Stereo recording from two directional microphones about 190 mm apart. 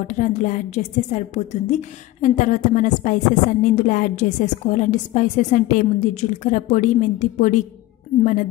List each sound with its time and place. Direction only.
0.0 s a woman's voice: 40° left (ahead or behind)